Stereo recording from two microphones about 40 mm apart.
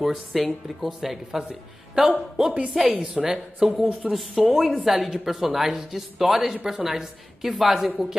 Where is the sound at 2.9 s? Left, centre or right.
Right.